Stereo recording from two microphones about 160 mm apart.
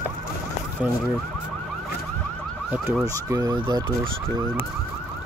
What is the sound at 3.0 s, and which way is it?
Speech, 20° right (ahead or behind).